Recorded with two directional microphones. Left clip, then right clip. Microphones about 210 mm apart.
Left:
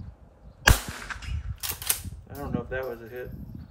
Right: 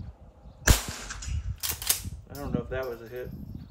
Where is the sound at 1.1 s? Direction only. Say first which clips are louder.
Left 4 dB; 20° left (ahead or behind).